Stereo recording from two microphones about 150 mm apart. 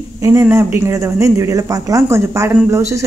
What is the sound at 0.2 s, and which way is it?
Speech, 15° right (ahead or behind).